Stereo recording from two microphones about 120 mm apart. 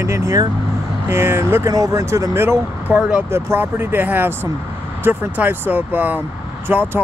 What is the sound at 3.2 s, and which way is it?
Speech, 20° right (ahead or behind).